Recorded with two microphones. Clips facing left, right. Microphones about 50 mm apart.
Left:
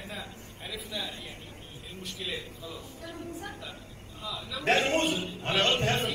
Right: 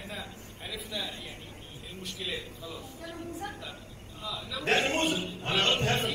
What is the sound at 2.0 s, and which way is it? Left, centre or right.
Speech, centre.